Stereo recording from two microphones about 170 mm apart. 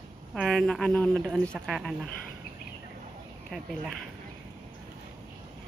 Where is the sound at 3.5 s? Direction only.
Centre (ahead or behind).